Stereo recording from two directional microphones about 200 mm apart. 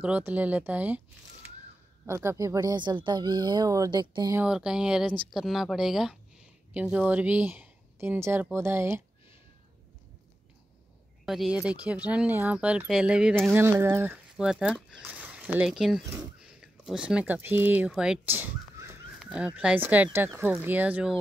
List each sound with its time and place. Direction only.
0.0 s speech: 5° right (ahead or behind)
4.4 s speech: 5° right (ahead or behind)
11.2 s speech: centre (ahead or behind)